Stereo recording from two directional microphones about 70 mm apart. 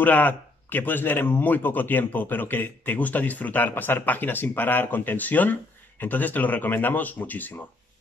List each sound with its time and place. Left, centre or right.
0.0 s speech: left